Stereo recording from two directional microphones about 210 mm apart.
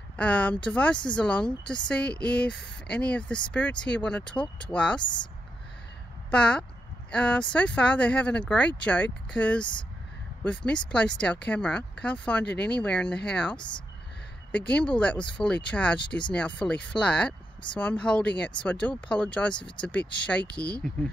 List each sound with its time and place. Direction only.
0.2 s speech: 5° left (ahead or behind)
5.0 s speech: 20° left (ahead or behind)
6.3 s speech: 5° left (ahead or behind)
14.7 s speech: 5° left (ahead or behind)